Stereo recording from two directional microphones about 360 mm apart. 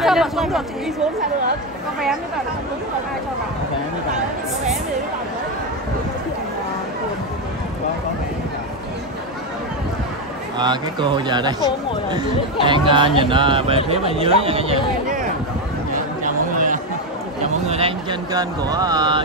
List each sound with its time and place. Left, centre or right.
0.0 s speech: centre
10.6 s speech: centre
15.9 s chatter: right
17.4 s speech: centre